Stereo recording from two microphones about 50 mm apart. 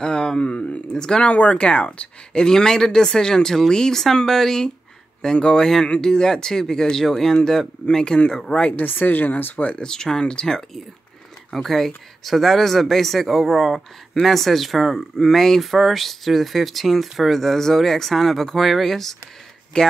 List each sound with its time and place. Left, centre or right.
0.0 s speech: centre
8.7 s speech: left
9.8 s speech: centre